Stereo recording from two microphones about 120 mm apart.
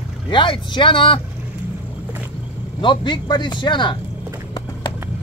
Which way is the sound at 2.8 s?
40° left (ahead or behind).